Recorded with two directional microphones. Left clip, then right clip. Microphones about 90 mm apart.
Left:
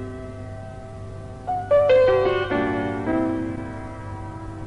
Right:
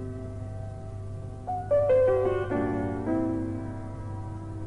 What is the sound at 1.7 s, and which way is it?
Music, 30° right (ahead or behind).